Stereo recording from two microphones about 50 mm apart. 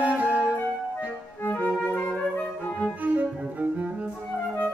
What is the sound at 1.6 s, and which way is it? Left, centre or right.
Music, left.